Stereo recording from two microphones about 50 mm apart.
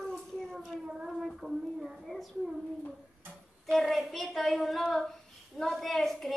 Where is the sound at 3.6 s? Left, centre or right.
Centre.